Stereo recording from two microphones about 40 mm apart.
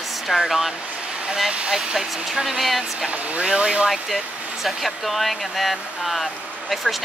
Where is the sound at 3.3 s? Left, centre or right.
Right.